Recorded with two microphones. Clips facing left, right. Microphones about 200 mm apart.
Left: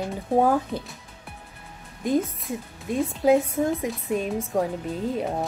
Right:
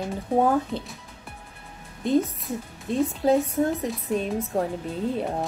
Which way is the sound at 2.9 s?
15° left (ahead or behind).